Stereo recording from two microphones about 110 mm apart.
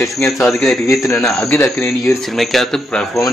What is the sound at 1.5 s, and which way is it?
Speech, 25° left (ahead or behind).